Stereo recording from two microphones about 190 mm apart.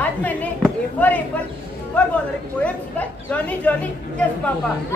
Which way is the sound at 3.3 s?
10° left (ahead or behind).